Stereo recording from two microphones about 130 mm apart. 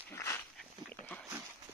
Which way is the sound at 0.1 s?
20° left (ahead or behind).